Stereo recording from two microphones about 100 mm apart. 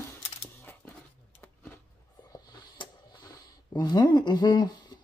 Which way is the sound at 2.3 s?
45° left (ahead or behind).